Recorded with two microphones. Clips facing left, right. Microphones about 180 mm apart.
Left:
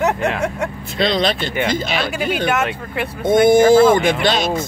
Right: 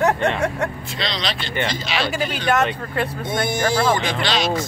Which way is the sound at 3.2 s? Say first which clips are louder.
Left 14 dB; 50° left (ahead or behind).